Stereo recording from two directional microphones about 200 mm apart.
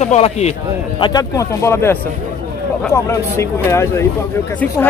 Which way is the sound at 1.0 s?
20° left (ahead or behind).